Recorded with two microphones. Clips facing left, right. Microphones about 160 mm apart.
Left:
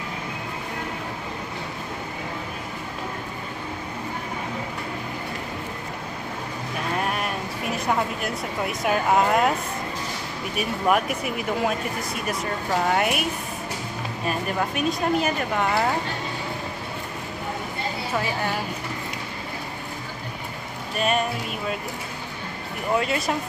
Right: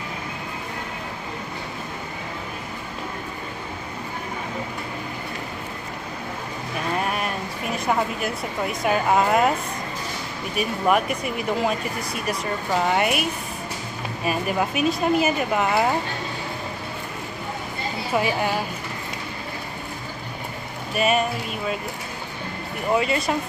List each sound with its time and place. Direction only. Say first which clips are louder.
7.0 s a sound: right 1 dB; centre (ahead or behind)
10.5 s speech: right 1 dB; centre (ahead or behind)
12.9 s speech: right 1 dB; centre (ahead or behind)
14.2 s speech: right 3 dB; 10° right (ahead or behind)
18.1 s speech: right 5 dB; 15° right (ahead or behind)
20.9 s speech: right 3 dB; 5° right (ahead or behind)
22.9 s speech: right 1 dB; centre (ahead or behind)